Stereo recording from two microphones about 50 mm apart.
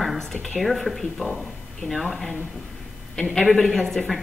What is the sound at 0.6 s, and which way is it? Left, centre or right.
A woman's voice, centre.